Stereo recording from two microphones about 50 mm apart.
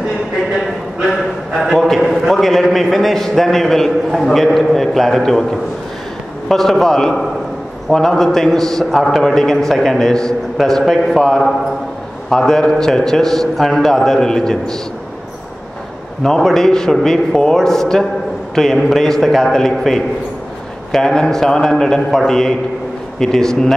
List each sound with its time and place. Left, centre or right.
1.6 s a man's voice: centre
6.5 s a man's voice: centre
16.2 s a man's voice: centre